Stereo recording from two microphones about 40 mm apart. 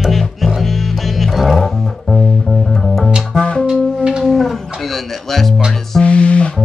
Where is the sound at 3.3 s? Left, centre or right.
Left.